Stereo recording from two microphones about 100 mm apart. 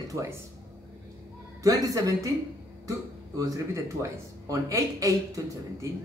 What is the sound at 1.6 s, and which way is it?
Speech, 35° right (ahead or behind).